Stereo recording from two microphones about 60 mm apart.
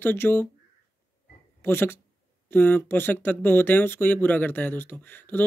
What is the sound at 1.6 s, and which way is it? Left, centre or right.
Speech, left.